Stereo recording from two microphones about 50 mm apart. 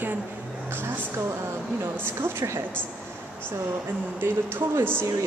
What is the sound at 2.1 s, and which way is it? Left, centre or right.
Speech, right.